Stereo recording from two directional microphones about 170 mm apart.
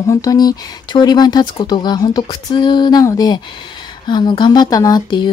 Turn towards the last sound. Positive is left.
turn(degrees=25)  # may be behind; listen again after turning